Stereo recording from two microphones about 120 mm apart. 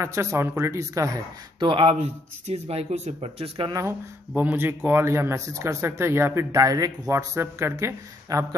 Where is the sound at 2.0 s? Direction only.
65° right (ahead or behind).